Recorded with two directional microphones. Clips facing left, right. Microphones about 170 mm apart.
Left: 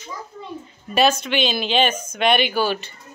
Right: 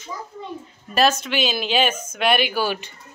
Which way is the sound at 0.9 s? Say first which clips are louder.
Left 1 dB; centre (ahead or behind).